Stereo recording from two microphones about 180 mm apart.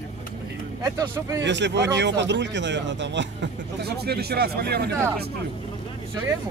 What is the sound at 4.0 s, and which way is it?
Speech, 60° right (ahead or behind).